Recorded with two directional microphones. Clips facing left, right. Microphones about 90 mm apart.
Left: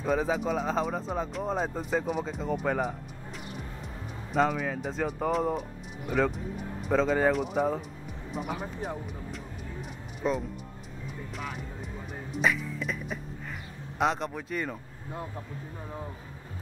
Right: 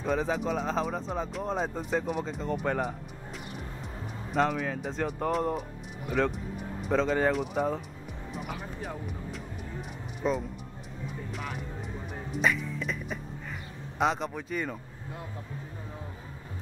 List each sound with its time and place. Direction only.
0.0 s speech: centre (ahead or behind)
4.3 s speech: centre (ahead or behind)
10.2 s speech: centre (ahead or behind)
12.4 s beatboxing: centre (ahead or behind)
13.9 s speech: centre (ahead or behind)